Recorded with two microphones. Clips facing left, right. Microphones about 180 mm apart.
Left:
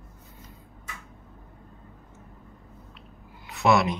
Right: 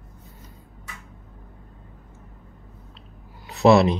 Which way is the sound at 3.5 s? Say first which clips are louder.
Right 6 dB; 35° right (ahead or behind).